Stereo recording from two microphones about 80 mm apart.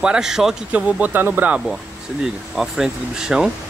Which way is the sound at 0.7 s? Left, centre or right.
Centre.